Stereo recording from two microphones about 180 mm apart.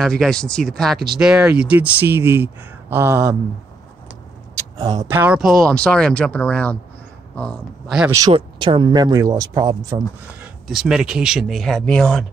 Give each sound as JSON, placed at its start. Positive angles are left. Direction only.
{"t": 0.0, "sound": "speech", "side_deg": 5}
{"t": 4.7, "sound": "speech", "side_deg": -20}
{"t": 5.2, "sound": "speech", "side_deg": -5}
{"t": 8.1, "sound": "speech", "side_deg": -25}
{"t": 10.4, "sound": "speech", "side_deg": -5}